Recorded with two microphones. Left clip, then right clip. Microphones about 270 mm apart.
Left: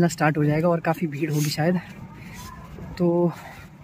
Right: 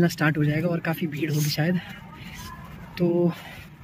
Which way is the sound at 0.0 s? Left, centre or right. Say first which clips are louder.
Left 2 dB; centre.